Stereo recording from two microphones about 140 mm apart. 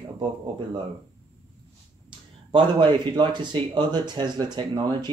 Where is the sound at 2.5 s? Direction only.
35° right (ahead or behind).